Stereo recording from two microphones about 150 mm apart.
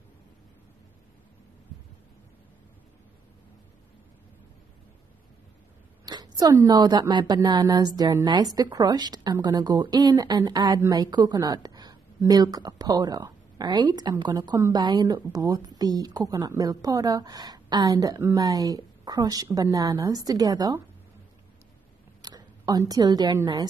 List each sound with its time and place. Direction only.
6.0 s a woman's voice: 30° right (ahead or behind)
22.2 s a woman's voice: 25° right (ahead or behind)